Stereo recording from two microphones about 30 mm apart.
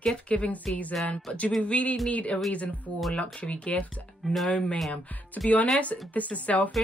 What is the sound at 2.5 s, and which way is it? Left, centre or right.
Speech, left.